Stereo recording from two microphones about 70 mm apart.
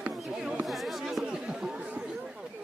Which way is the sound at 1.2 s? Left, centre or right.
Centre.